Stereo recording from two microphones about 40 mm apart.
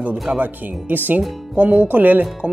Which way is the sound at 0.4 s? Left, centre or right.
Right.